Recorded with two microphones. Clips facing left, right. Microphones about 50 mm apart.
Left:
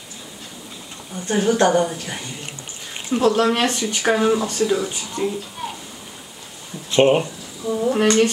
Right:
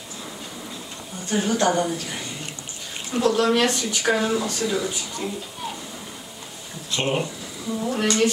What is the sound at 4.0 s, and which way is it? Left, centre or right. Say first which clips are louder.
Speech: left 5 dB; left.